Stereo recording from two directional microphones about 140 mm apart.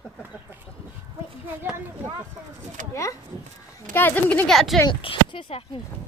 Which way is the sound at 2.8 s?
70° right (ahead or behind).